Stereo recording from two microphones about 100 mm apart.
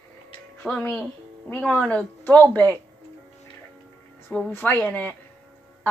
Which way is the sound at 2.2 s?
15° left (ahead or behind).